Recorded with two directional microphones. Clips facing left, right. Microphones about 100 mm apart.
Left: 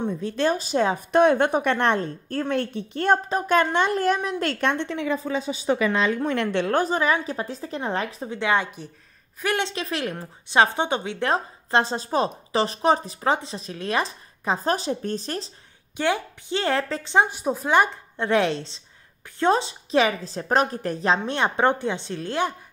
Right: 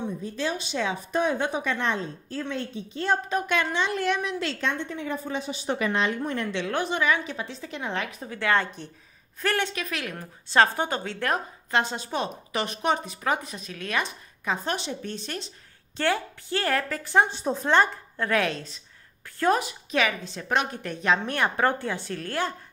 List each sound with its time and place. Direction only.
0.0 s speech: 55° left (ahead or behind)
0.6 s speech: 45° left (ahead or behind)
1.1 s a woman's voice: 65° left (ahead or behind)
3.3 s speech: 35° left (ahead or behind); by 5.2 s 90° left
6.2 s a woman's voice: 80° left
6.5 s a woman's voice: 45° left (ahead or behind)
8.4 s a woman's voice: 15° left (ahead or behind)
10.5 s a woman's voice: 20° left (ahead or behind); by 15.5 s 35° left (ahead or behind)
16.0 s a woman's voice: 20° left (ahead or behind)
17.3 s a woman's voice: 10° left (ahead or behind); by 21.2 s 35° left (ahead or behind)
21.3 s a woman's voice: 20° left (ahead or behind)